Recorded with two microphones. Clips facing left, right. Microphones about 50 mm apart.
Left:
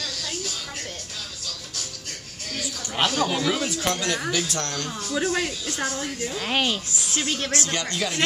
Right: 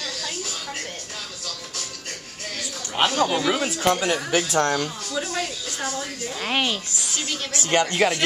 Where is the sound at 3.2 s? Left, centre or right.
Centre.